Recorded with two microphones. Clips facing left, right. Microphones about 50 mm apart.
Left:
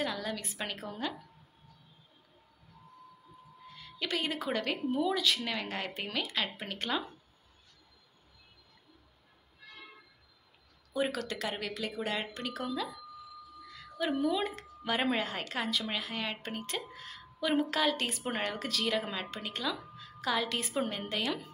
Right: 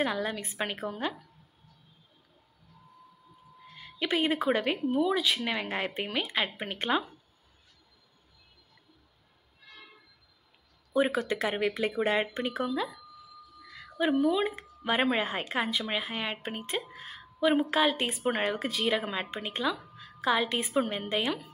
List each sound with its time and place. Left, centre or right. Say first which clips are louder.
0.0 s speech: right 5 dB; right
3.7 s a woman's voice: right 5 dB; right
10.9 s speech: right 6 dB; right
13.7 s speech: right 5 dB; centre
19.7 s music: right 3 dB; centre
20.2 s speech: right 5 dB; right